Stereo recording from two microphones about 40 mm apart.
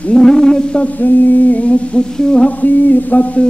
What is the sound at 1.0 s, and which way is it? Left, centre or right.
Humming, left.